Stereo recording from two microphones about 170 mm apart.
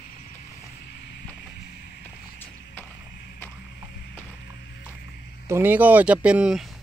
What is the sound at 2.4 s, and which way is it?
Clip-clop, 10° left (ahead or behind).